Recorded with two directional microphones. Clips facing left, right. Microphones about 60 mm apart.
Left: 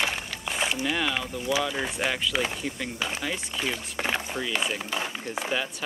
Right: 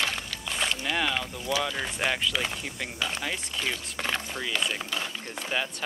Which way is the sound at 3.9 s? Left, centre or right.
Centre.